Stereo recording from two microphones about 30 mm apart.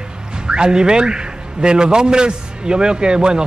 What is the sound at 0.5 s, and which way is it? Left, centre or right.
Speech, right.